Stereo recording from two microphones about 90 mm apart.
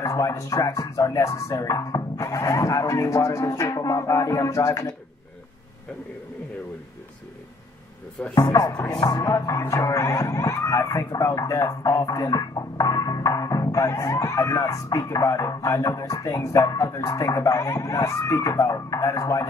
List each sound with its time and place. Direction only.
0.0 s speech: 35° left (ahead or behind)
8.4 s music: 40° left (ahead or behind)
9.2 s speech: 35° left (ahead or behind)